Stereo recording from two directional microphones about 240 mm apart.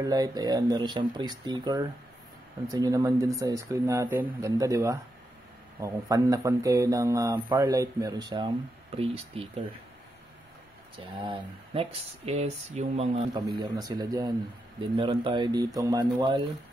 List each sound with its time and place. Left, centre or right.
0.0 s speech: centre
11.2 s speech: right